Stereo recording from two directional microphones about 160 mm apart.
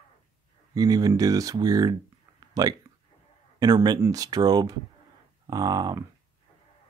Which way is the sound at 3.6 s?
25° right (ahead or behind).